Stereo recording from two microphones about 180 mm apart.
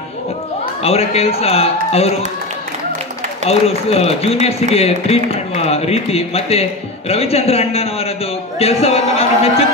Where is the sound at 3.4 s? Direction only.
35° left (ahead or behind).